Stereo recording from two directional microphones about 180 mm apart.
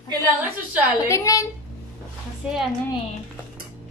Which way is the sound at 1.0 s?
15° left (ahead or behind).